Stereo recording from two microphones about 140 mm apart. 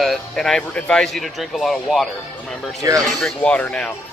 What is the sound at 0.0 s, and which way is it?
Speech, centre (ahead or behind).